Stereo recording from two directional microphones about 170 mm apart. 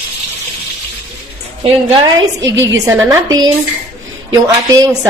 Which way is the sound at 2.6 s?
20° right (ahead or behind).